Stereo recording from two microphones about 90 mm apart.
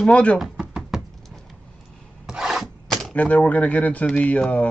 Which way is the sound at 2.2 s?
5° right (ahead or behind).